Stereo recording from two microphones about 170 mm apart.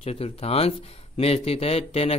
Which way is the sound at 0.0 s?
35° left (ahead or behind).